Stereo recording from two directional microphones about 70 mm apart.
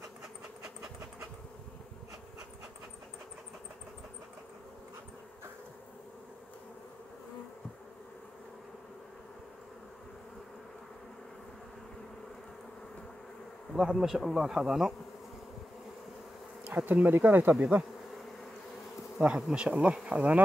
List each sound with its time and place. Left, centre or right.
13.7 s bee: centre
16.6 s bee: right
19.1 s bee: centre